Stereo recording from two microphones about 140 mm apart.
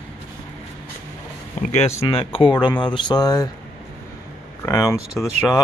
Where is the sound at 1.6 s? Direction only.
55° left (ahead or behind).